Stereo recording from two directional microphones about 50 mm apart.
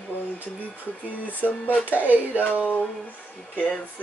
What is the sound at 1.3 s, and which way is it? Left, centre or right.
Speech, left.